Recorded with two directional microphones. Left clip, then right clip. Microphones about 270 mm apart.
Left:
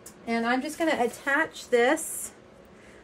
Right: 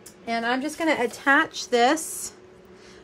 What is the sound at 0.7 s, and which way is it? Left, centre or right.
A woman's voice, right.